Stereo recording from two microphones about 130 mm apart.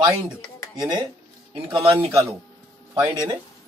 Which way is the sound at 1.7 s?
20° right (ahead or behind).